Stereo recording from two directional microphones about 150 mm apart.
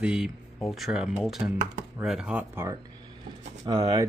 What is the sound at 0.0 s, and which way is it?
Speech, 5° right (ahead or behind).